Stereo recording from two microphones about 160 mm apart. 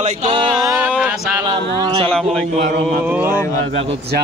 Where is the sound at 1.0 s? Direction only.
10° right (ahead or behind).